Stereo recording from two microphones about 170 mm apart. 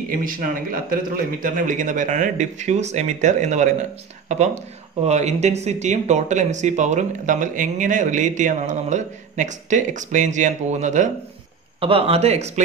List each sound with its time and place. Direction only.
0.1 s speech: 55° right (ahead or behind)
5.0 s speech: 40° right (ahead or behind)
11.8 s speech: 35° right (ahead or behind)